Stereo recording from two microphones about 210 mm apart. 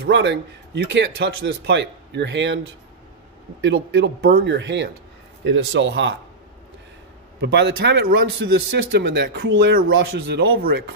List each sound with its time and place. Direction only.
0.0 s speech: 55° right (ahead or behind)
3.6 s speech: 55° right (ahead or behind)
7.3 s speech: 50° right (ahead or behind)